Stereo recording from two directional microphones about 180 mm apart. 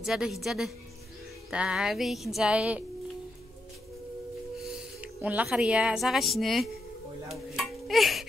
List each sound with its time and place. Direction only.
0.0 s music: centre (ahead or behind)
4.6 s speech: 5° right (ahead or behind)